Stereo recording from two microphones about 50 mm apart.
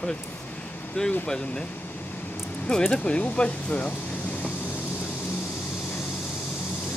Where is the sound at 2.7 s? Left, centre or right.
Centre.